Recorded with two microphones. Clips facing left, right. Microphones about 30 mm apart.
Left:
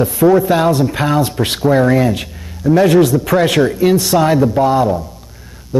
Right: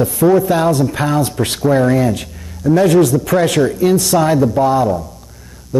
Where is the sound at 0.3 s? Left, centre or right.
Centre.